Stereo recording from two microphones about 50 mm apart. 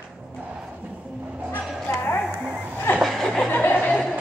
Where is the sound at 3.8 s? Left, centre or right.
Centre.